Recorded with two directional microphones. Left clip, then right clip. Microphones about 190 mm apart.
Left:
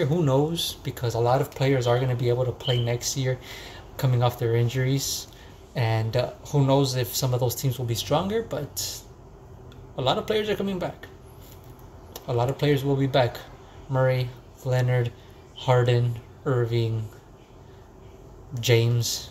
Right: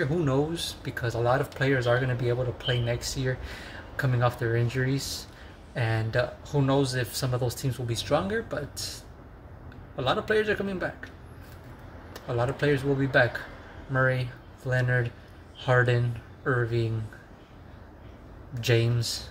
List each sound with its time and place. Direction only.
0.0 s speech: 10° right (ahead or behind)
12.1 s speech: 10° right (ahead or behind)
14.8 s speech: 10° right (ahead or behind)
18.5 s speech: 10° right (ahead or behind)